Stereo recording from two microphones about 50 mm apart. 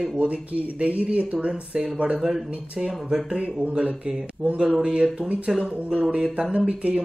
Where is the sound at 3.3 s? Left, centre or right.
Right.